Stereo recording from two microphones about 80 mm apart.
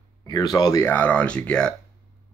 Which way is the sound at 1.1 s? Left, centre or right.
Centre.